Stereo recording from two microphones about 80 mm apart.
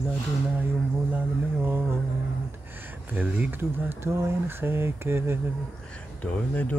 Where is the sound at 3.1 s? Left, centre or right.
Centre.